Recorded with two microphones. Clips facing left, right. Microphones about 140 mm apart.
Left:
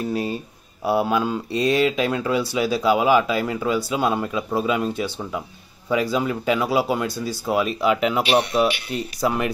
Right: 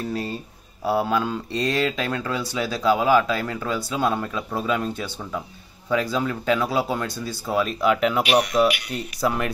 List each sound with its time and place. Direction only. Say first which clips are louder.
0.0 s speech: left 3 dB; 15° left (ahead or behind)
8.2 s speech: even; 30° left (ahead or behind)
9.2 s speech: left 1 dB; 5° left (ahead or behind)